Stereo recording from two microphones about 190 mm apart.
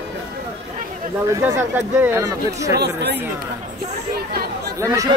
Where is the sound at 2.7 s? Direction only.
60° right (ahead or behind).